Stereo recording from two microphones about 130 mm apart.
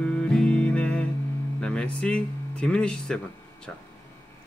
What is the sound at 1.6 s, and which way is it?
Speech, 10° left (ahead or behind).